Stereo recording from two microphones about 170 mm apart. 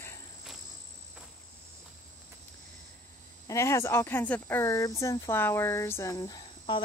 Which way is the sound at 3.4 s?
20° left (ahead or behind).